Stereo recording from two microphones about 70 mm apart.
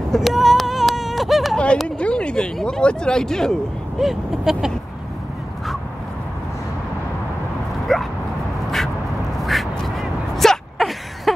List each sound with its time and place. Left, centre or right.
0.1 s a sound: centre
1.9 s speech: centre
4.0 s speech: centre
7.9 s dog: centre
9.4 s gasp: centre